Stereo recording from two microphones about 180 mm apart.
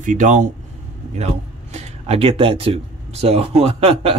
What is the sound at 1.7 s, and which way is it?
Speech, 35° right (ahead or behind).